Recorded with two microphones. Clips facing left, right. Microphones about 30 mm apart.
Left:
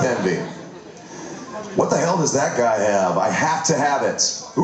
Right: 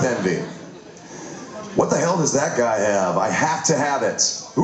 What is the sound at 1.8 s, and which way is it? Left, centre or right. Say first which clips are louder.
Speech: even; centre.